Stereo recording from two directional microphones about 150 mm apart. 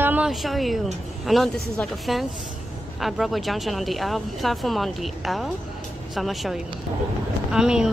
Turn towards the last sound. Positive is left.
turn(degrees=-5)  # may be behind; listen again after turning